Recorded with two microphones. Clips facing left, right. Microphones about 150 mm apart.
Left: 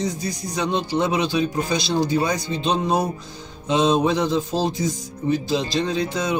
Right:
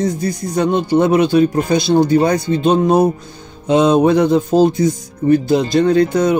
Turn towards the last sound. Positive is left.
turn(degrees=-55)  # may be behind; listen again after turning